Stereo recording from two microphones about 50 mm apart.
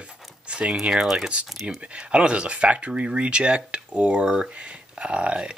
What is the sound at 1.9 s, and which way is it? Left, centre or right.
Speech, right.